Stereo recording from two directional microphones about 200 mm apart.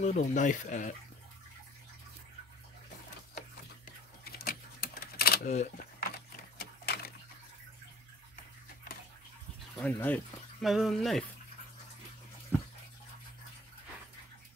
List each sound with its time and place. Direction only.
0.0 s speech: 40° left (ahead or behind)
3.8 s camera: 50° left (ahead or behind)
5.5 s a sound: 40° left (ahead or behind)
9.8 s speech: 10° left (ahead or behind)